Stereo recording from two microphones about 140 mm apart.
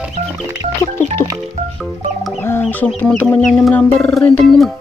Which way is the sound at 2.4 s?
15° left (ahead or behind).